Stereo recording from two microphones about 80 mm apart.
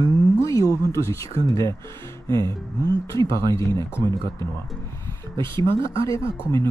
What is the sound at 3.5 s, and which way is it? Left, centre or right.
Speech, left.